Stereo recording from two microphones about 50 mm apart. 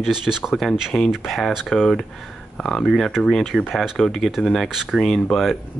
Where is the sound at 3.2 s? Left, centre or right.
Centre.